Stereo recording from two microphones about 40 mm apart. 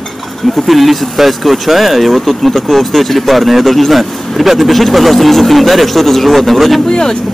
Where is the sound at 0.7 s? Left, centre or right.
Centre.